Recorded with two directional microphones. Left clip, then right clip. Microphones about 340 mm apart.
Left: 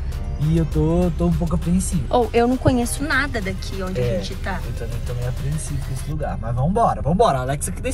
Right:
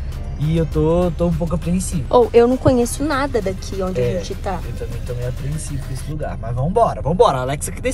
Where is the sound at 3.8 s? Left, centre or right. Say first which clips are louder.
Right 5 dB; centre.